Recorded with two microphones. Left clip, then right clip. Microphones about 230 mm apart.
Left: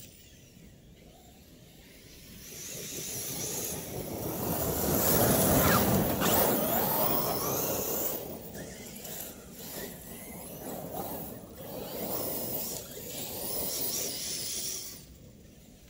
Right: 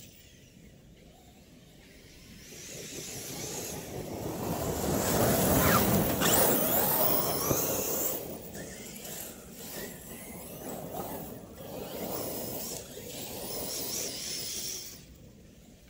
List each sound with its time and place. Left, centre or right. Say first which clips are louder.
2.4 s vehicle: left 2 dB; centre
5.4 s a sound: even; centre
5.9 s vehicle: right 1 dB; right; by 15.0 s centre